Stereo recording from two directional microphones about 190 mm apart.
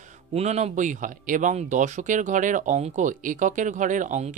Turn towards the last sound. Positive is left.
turn(degrees=-40)  # may be behind; listen again after turning